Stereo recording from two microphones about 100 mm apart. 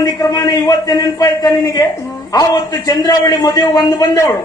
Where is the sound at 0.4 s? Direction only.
40° left (ahead or behind).